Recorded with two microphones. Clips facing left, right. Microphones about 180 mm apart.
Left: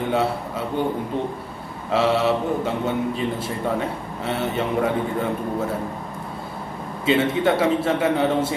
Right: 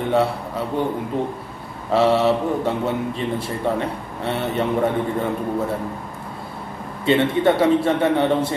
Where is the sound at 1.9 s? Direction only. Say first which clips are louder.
Right 3 dB; centre (ahead or behind).